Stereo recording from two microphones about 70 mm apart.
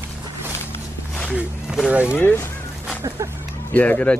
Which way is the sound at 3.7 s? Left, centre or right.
Left.